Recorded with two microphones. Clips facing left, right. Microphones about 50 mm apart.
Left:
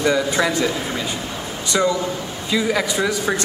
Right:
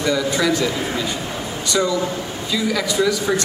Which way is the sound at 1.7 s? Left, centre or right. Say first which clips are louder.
Left 1 dB; left.